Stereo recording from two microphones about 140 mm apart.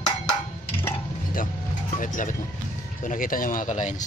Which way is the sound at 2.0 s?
70° left (ahead or behind).